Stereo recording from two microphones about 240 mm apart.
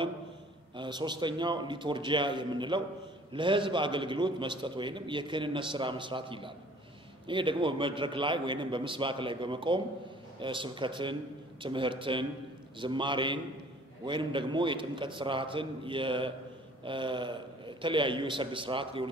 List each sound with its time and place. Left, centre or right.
0.7 s a man's voice: centre